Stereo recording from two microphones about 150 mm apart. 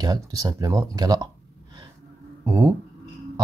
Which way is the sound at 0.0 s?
25° right (ahead or behind).